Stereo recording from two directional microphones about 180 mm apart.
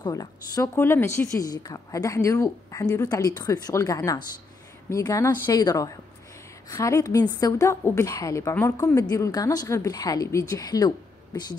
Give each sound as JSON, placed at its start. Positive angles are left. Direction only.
{"t": 0.0, "sound": "a woman's voice", "side_deg": 20}